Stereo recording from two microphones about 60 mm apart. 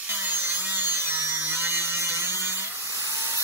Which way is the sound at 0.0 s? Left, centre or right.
Right.